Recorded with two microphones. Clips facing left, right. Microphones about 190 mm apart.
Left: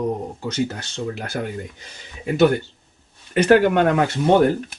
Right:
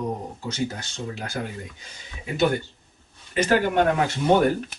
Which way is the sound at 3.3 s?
65° left (ahead or behind).